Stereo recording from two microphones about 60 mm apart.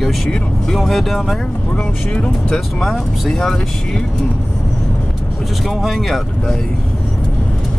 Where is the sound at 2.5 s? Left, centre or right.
Centre.